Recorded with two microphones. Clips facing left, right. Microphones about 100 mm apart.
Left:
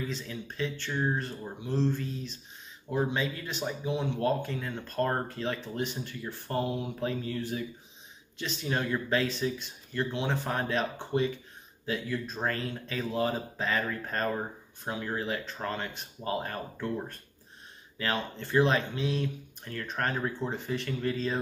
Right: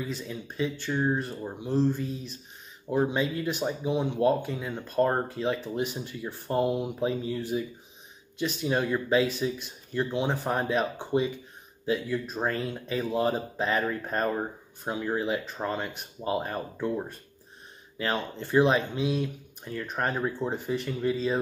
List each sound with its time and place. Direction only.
0.1 s speech: 10° right (ahead or behind)